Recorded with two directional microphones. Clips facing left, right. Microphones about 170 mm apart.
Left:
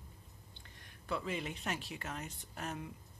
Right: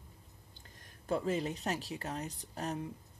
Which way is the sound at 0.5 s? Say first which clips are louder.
Right 2 dB; 40° right (ahead or behind).